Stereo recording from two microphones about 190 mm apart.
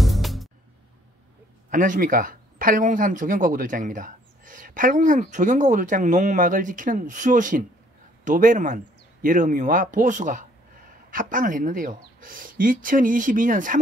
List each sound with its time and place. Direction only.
0.0 s music: centre (ahead or behind)
1.7 s speech: 45° right (ahead or behind)